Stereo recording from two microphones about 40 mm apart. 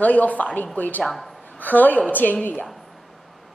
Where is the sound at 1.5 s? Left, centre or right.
Left.